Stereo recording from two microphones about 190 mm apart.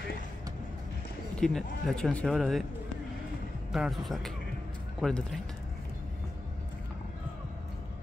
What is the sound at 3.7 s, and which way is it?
Speech, centre (ahead or behind).